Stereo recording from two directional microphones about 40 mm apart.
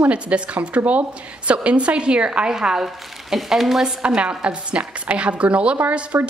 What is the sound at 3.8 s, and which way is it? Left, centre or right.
A woman's voice, right.